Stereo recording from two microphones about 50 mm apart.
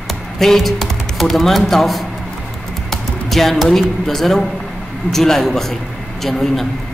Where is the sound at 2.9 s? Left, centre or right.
Centre.